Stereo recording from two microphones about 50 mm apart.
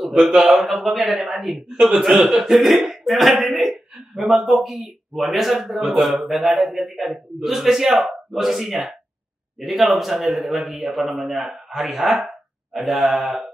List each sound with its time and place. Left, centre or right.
0.3 s a man's voice: centre
0.6 s a man's voice: centre